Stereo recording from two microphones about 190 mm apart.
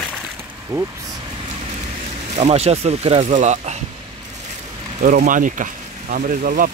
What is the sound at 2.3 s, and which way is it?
Speech, 35° right (ahead or behind).